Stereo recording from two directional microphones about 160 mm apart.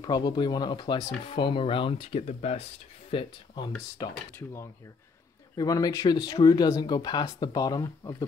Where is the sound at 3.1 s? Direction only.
30° left (ahead or behind).